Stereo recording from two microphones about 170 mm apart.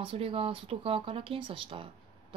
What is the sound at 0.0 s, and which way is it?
Speech, 30° right (ahead or behind).